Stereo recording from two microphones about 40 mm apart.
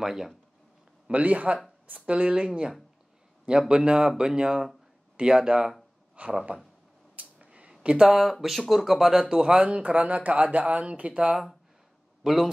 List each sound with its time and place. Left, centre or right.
0.0 s speech: centre
1.1 s speech: right; by 5.8 s centre
6.2 s speech: right
7.2 s a sound: right
7.8 s speech: right
8.1 s speech: centre
9.3 s speech: right
12.2 s a man's voice: centre